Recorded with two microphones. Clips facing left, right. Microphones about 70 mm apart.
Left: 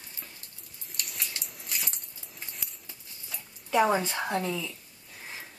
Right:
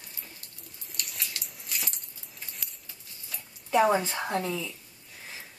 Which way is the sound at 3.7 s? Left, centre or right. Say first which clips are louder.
Right 1 dB; centre.